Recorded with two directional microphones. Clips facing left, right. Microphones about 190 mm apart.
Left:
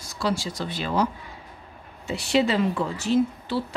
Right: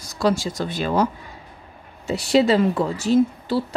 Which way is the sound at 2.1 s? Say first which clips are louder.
Right 5 dB; 40° right (ahead or behind).